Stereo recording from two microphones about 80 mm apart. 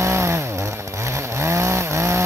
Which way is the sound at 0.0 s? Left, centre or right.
Right.